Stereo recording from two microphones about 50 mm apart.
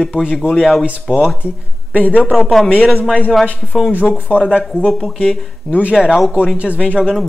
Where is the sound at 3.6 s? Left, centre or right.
Centre.